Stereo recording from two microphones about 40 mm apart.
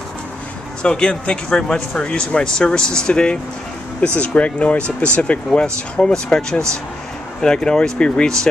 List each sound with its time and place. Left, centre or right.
0.8 s speech: left